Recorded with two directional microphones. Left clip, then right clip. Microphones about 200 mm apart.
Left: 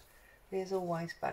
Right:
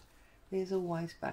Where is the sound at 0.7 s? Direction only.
40° right (ahead or behind).